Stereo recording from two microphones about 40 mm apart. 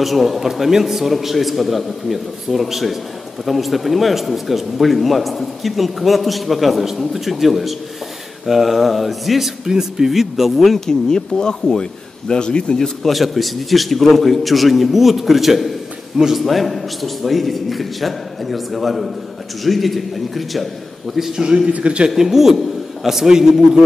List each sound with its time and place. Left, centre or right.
0.0 s speech: centre
9.7 s speech: centre
10.9 s speech: centre
12.7 s a man's voice: centre
16.4 s speech: centre
21.1 s a man's voice: centre
21.7 s speech: right
22.1 s a man's voice: centre